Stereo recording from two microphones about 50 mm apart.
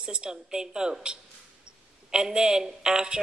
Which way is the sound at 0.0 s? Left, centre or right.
Centre.